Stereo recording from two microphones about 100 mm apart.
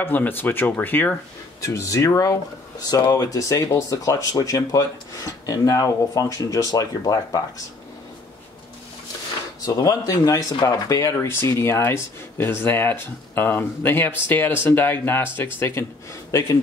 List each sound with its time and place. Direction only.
0.0 s speech: 20° left (ahead or behind)
1.6 s speech: 30° left (ahead or behind)
9.7 s speech: 35° left (ahead or behind)
10.5 s speech: 45° left (ahead or behind)
10.9 s speech: 30° left (ahead or behind)